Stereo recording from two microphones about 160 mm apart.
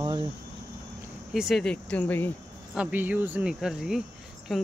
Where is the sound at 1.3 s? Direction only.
Centre (ahead or behind).